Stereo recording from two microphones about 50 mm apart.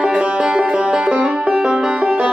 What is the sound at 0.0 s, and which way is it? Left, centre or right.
Music, right.